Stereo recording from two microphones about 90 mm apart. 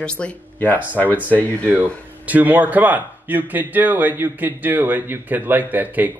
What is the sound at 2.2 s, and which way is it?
Speech, 20° right (ahead or behind).